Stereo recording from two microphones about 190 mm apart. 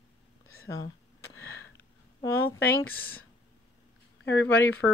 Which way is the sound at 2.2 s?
10° left (ahead or behind).